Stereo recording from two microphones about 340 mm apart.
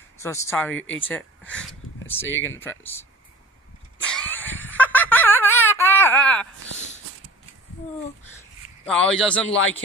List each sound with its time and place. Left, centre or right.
0.2 s speech: centre
2.2 s speech: left
2.6 s a man's voice: centre
4.0 s a sound: centre
9.1 s a man's voice: centre
9.6 s speech: left